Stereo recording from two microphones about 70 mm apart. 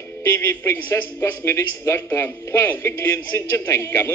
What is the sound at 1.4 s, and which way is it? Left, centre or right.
A man's voice, left.